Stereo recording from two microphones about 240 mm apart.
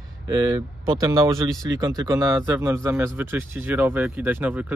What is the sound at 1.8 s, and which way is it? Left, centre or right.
Speech, centre.